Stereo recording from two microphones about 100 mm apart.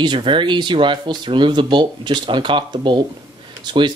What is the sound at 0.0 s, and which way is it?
Speech, 55° right (ahead or behind).